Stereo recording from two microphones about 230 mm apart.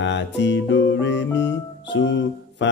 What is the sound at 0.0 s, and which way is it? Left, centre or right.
Speech, left.